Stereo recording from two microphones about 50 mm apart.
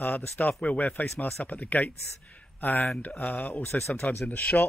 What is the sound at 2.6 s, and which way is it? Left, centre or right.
Speech, left.